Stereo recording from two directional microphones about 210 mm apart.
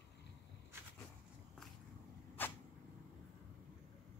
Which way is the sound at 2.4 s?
10° left (ahead or behind).